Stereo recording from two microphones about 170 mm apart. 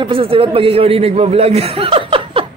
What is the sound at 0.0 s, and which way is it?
A man's voice, 30° right (ahead or behind).